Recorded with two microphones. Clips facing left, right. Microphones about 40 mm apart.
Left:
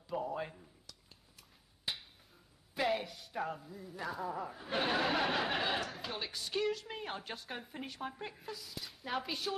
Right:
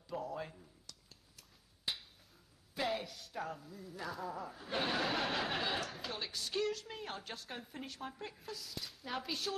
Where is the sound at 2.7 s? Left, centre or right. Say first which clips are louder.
Left 4 dB; centre.